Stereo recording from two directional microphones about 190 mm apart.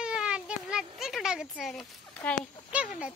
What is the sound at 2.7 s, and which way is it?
Speech, 5° right (ahead or behind).